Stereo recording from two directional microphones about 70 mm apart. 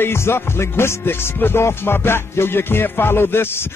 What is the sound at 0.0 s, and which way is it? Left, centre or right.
Music, left.